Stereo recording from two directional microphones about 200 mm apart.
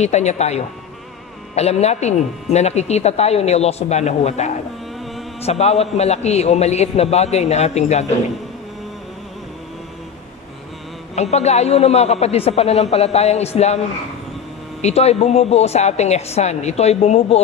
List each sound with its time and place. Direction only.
0.0 s speech: 35° left (ahead or behind)
11.1 s speech: 35° left (ahead or behind)
14.8 s speech: 30° left (ahead or behind)